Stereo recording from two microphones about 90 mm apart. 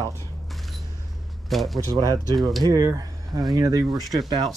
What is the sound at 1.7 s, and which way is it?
Speech, 45° right (ahead or behind).